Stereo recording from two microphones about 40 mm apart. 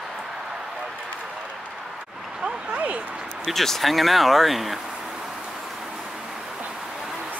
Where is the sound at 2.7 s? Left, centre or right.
Right.